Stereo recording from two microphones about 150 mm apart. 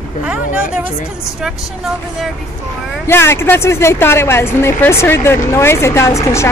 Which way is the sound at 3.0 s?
15° left (ahead or behind).